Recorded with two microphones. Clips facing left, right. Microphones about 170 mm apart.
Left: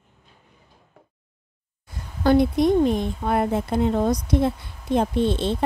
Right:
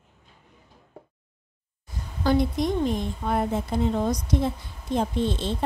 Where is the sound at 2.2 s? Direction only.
60° left (ahead or behind).